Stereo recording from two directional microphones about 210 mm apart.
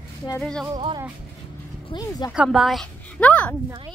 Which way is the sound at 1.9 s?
20° left (ahead or behind).